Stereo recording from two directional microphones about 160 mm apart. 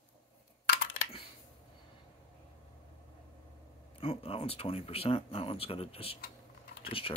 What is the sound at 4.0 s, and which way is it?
Speech, 35° left (ahead or behind).